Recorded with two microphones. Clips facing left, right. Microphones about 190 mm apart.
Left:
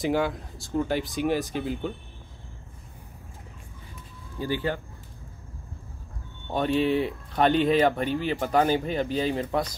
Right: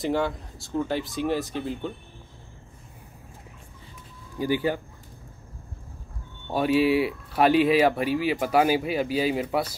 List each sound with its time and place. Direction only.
0.0 s speech: centre (ahead or behind)
4.4 s speech: 10° right (ahead or behind)
6.4 s speech: 5° right (ahead or behind)